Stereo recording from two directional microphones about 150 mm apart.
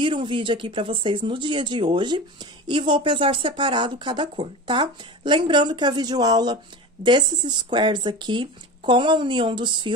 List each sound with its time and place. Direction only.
0.0 s speech: 35° right (ahead or behind)